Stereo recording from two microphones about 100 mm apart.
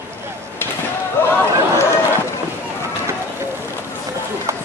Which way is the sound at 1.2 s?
20° left (ahead or behind).